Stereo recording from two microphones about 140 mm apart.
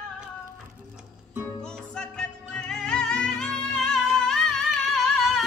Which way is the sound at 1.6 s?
5° left (ahead or behind).